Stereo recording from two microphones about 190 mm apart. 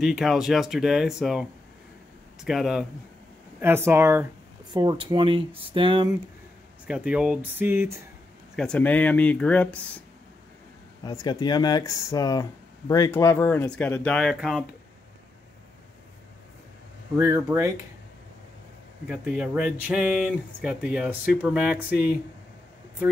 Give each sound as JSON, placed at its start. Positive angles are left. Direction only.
{"t": 0.0, "sound": "speech", "side_deg": 0}
{"t": 4.7, "sound": "speech", "side_deg": -25}
{"t": 6.9, "sound": "speech", "side_deg": -5}
{"t": 8.5, "sound": "speech", "side_deg": 5}
{"t": 11.1, "sound": "speech", "side_deg": 20}
{"t": 17.2, "sound": "speech", "side_deg": -15}
{"t": 19.0, "sound": "speech", "side_deg": -5}